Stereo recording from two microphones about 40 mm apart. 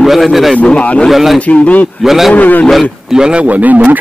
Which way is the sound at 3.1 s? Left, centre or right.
Right.